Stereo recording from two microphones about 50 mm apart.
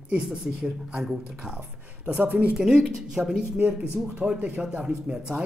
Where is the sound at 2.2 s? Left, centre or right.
Right.